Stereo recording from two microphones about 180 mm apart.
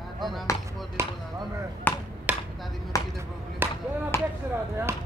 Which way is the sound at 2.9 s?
20° left (ahead or behind).